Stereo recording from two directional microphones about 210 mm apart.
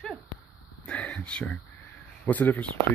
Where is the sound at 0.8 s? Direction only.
5° left (ahead or behind).